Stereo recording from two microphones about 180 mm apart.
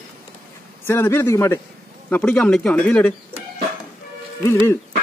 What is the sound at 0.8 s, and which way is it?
Speech, 15° left (ahead or behind).